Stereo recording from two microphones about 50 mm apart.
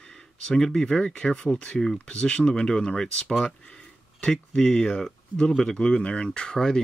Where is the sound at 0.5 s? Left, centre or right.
Centre.